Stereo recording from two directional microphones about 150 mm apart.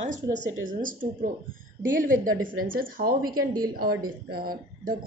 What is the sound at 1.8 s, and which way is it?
A woman's voice, 65° right (ahead or behind).